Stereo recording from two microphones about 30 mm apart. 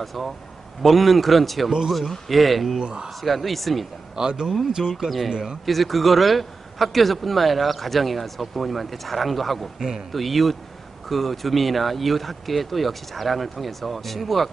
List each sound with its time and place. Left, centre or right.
0.0 s a man's voice: centre
2.8 s speech: right
3.2 s a man's voice: centre
4.1 s speech: right
5.3 s speech: right
5.7 s a man's voice: centre
9.8 s speech: centre
10.1 s a man's voice: centre